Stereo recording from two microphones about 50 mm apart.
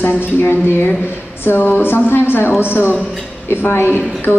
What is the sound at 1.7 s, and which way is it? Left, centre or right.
A woman's voice, left.